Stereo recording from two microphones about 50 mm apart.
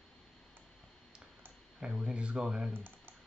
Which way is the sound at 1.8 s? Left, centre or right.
Centre.